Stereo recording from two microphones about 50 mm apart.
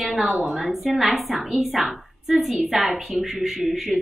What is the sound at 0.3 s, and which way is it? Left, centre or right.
Speech, centre.